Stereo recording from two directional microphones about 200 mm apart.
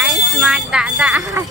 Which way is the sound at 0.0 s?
Centre (ahead or behind).